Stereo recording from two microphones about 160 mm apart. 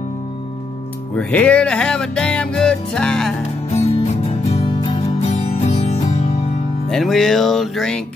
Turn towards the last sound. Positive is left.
turn(degrees=0)  # may be behind; listen again after turning